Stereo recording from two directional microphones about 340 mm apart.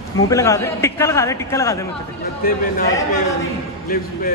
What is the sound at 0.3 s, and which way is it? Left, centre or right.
A man's voice, centre.